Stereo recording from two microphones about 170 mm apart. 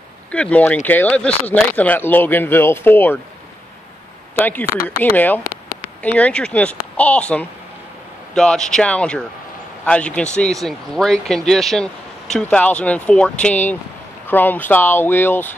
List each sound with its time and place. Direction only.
0.3 s speech: 5° left (ahead or behind)
4.4 s speech: 10° left (ahead or behind)
5.4 s a sound: 55° left (ahead or behind)
6.0 s speech: 5° left (ahead or behind)